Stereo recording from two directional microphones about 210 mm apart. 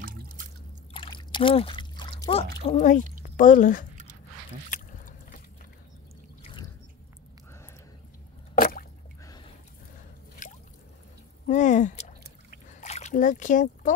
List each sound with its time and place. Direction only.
0.0 s drip: 45° right (ahead or behind)
0.9 s trickle: 20° left (ahead or behind)
2.6 s speech: 35° left (ahead or behind)
4.6 s a sound: 40° left (ahead or behind)
6.4 s boat: 20° left (ahead or behind)
10.4 s a sound: 35° left (ahead or behind)